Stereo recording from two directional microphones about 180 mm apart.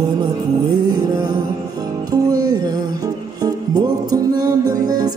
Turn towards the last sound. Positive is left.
turn(degrees=-20)  # may be behind; listen again after turning